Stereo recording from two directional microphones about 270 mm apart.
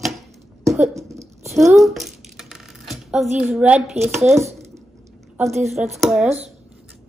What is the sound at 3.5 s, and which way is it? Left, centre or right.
Speech, centre.